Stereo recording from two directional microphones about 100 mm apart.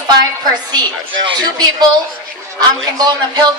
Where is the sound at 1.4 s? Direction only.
45° right (ahead or behind).